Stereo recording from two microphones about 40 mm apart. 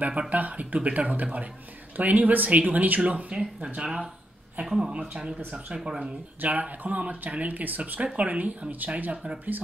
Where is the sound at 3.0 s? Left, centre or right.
Right.